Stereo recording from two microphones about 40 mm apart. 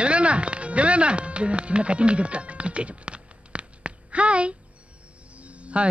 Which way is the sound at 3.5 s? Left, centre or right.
Right.